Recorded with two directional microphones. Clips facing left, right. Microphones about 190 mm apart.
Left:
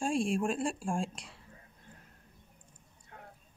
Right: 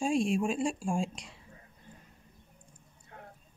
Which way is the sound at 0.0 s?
Centre (ahead or behind).